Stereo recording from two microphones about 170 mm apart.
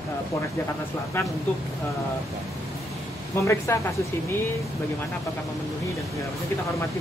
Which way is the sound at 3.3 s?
15° left (ahead or behind).